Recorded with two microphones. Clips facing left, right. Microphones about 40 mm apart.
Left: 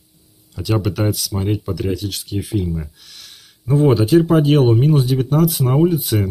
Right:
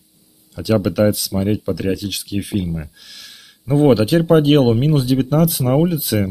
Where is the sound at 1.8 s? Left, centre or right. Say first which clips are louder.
Right 2 dB; right.